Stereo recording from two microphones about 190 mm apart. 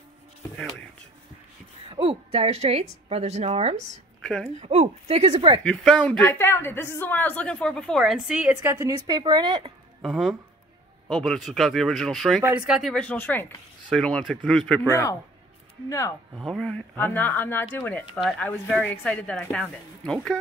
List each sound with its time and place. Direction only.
1.9 s a woman's voice: 30° right (ahead or behind)
4.2 s a sound: 5° left (ahead or behind)
4.6 s a woman's voice: 35° right (ahead or behind)
5.6 s speech: 5° left (ahead or behind); by 9.7 s 25° right (ahead or behind)
10.0 s speech: centre (ahead or behind)
14.9 s speech: 15° left (ahead or behind)
16.3 s speech: centre (ahead or behind)